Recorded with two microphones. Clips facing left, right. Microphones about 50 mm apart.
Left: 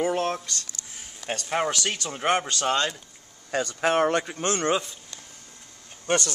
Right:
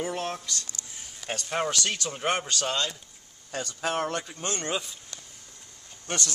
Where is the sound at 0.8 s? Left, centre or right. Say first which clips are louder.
Left 1 dB; centre.